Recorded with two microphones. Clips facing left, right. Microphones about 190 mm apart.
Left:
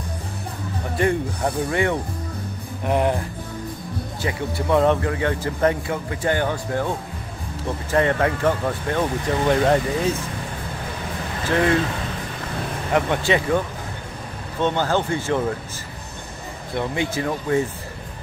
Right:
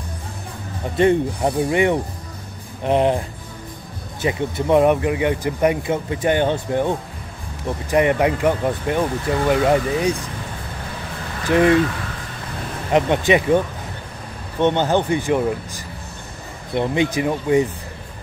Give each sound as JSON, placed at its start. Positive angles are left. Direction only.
{"t": 0.9, "sound": "speech", "side_deg": -20}
{"t": 11.4, "sound": "speech", "side_deg": -20}
{"t": 12.9, "sound": "speech", "side_deg": -20}
{"t": 14.6, "sound": "speech", "side_deg": -20}
{"t": 16.7, "sound": "speech", "side_deg": -20}